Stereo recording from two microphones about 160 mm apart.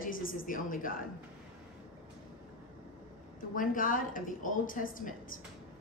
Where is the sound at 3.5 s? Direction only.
55° left (ahead or behind).